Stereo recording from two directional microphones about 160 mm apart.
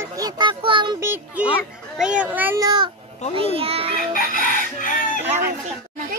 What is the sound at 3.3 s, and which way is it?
Speech, 35° right (ahead or behind).